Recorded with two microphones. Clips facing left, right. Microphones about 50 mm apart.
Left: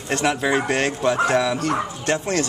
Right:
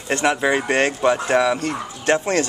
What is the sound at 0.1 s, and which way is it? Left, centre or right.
Speech, centre.